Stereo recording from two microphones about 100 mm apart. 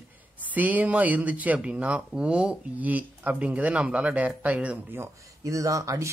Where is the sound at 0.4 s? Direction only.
15° right (ahead or behind).